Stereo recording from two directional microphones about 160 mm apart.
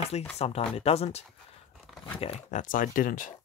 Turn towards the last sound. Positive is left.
turn(degrees=55)  # may be behind; listen again after turning